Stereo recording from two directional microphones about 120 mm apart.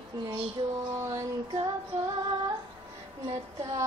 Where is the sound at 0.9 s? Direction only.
25° right (ahead or behind).